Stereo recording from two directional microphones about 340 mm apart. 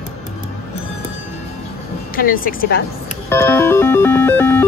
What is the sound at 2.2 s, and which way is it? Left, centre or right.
Speech, left.